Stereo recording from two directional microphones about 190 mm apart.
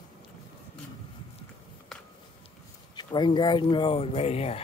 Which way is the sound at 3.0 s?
25° left (ahead or behind).